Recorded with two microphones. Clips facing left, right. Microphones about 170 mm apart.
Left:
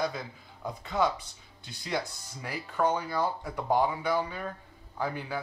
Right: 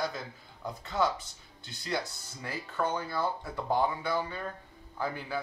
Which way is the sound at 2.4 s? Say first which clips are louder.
Left 4 dB; 15° left (ahead or behind).